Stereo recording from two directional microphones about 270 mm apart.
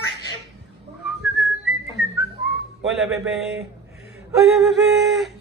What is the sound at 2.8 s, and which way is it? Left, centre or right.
Speech, centre.